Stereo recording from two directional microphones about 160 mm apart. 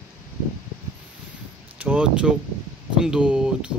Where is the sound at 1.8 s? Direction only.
10° right (ahead or behind).